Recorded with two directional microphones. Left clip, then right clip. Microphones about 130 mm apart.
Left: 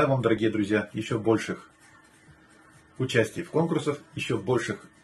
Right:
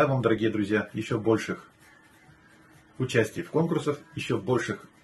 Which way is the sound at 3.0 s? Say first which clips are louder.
Left 1 dB; 15° left (ahead or behind).